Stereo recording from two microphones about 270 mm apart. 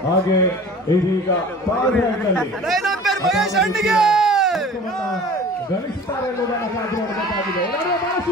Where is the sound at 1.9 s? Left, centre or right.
Centre.